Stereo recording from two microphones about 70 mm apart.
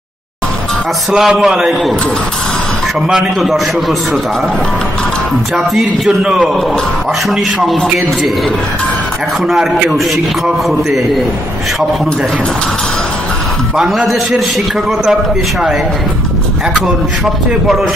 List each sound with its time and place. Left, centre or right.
1.1 s a man's voice: centre
3.1 s a man's voice: centre
6.0 s a man's voice: centre
7.7 s a man's voice: centre
9.5 s a man's voice: centre
13.7 s a man's voice: centre